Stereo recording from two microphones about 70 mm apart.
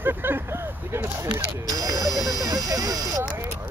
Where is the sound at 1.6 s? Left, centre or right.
Right.